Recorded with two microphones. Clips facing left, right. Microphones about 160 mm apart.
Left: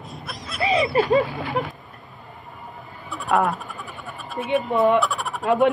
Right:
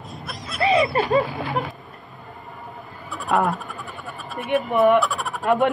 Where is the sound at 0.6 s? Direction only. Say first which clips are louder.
Right 3 dB; 25° right (ahead or behind).